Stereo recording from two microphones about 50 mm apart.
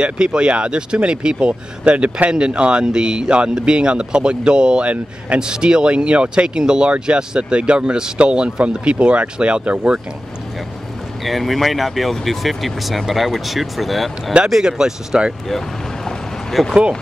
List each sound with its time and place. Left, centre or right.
0.0 s speech: centre
11.2 s speech: centre
14.6 s speech: centre
16.1 s a sound: centre